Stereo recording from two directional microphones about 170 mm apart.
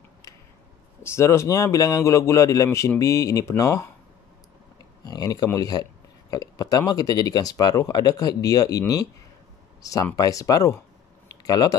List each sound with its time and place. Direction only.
1.0 s speech: 15° left (ahead or behind)
5.0 s speech: 20° left (ahead or behind)